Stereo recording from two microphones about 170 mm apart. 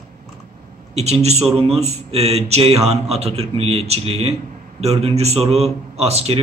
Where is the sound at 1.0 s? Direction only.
40° right (ahead or behind).